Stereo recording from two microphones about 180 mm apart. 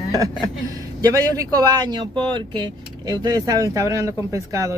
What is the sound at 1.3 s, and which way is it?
Speech, 20° right (ahead or behind).